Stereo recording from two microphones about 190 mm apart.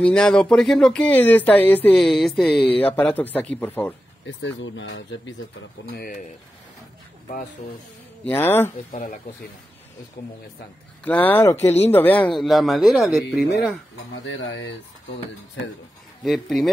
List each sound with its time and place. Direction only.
0.0 s speech: 5° left (ahead or behind)
4.3 s speech: 80° left
5.9 s speech: 50° left (ahead or behind)
8.3 s speech: 10° left (ahead or behind)
8.9 s speech: 45° left (ahead or behind)
11.1 s speech: 10° left (ahead or behind)
14.2 s speech: 85° left
16.3 s speech: centre (ahead or behind)